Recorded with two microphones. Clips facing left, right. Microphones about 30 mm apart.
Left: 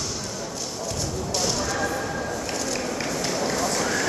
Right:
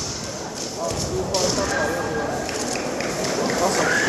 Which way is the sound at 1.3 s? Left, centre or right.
Right.